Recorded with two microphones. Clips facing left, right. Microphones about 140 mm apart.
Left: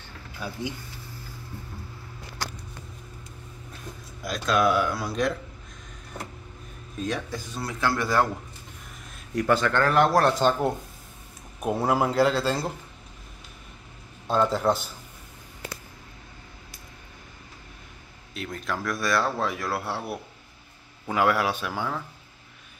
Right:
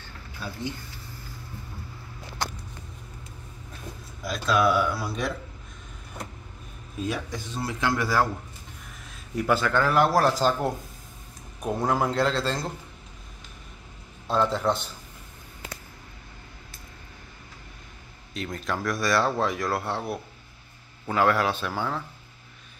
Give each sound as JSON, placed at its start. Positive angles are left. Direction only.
{"t": 4.2, "sound": "speech", "side_deg": 0}
{"t": 7.0, "sound": "a man's voice", "side_deg": -10}
{"t": 7.3, "sound": "a man's voice", "side_deg": -20}
{"t": 9.3, "sound": "speech", "side_deg": -5}
{"t": 14.2, "sound": "speech", "side_deg": 0}
{"t": 18.3, "sound": "a man's voice", "side_deg": 0}